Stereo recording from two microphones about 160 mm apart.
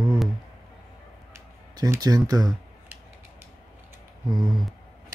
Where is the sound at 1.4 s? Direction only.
20° right (ahead or behind).